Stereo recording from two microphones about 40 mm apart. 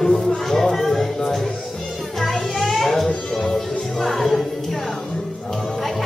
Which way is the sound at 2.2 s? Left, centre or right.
Centre.